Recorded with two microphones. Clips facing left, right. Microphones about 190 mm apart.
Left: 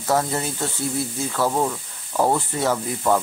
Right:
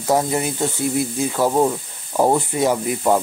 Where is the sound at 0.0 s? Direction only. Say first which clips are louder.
Right 3 dB; 15° right (ahead or behind).